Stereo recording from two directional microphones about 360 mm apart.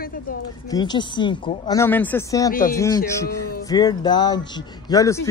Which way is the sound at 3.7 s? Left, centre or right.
Centre.